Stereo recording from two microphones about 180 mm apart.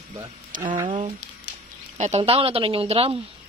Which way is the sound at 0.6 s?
30° right (ahead or behind).